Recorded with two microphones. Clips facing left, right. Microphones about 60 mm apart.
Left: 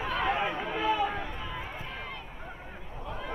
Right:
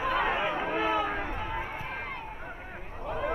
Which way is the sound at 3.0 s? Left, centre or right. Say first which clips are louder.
Right 7 dB; right.